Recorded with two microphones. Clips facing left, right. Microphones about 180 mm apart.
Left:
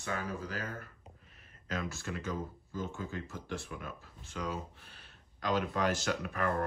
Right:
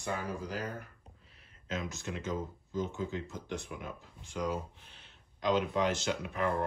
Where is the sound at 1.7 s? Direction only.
20° right (ahead or behind).